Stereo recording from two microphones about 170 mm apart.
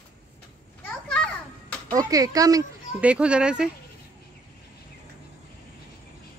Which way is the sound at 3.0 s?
5° right (ahead or behind).